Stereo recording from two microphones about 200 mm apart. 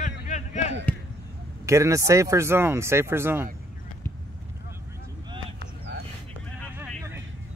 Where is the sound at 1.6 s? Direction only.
15° right (ahead or behind).